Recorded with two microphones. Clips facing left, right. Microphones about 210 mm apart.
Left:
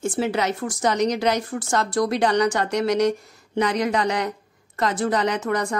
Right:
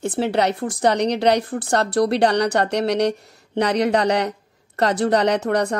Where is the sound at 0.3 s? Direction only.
65° right (ahead or behind).